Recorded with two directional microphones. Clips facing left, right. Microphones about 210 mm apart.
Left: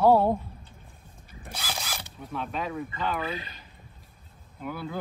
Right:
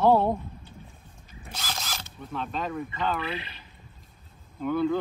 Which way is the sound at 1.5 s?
10° left (ahead or behind).